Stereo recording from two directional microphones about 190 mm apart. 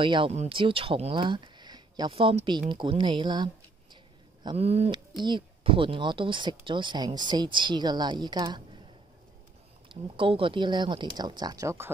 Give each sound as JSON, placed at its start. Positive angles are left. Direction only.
{"t": 0.0, "sound": "speech", "side_deg": -25}
{"t": 3.9, "sound": "a sound", "side_deg": -25}
{"t": 5.2, "sound": "speech", "side_deg": -25}
{"t": 9.8, "sound": "speech", "side_deg": -25}